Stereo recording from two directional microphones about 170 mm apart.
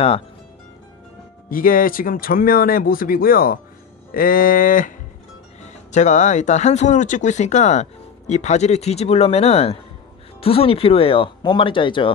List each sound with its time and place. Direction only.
1.5 s speech: 55° left (ahead or behind); by 12.1 s 30° left (ahead or behind)